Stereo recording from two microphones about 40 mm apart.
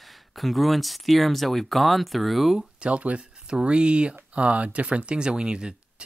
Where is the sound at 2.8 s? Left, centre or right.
Right.